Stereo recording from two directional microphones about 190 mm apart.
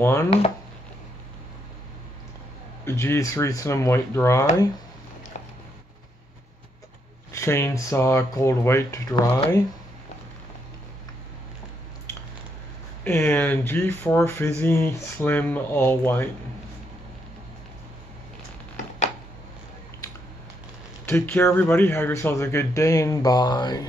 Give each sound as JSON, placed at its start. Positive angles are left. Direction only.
{"t": 0.0, "sound": "speech", "side_deg": 15}
{"t": 2.8, "sound": "speech", "side_deg": 15}
{"t": 7.3, "sound": "speech", "side_deg": 15}
{"t": 13.0, "sound": "speech", "side_deg": 10}
{"t": 21.0, "sound": "speech", "side_deg": 10}